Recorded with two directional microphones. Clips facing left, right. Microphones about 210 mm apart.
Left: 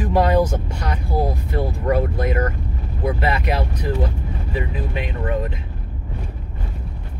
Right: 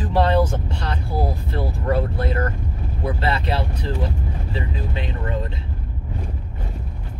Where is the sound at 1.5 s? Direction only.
15° left (ahead or behind).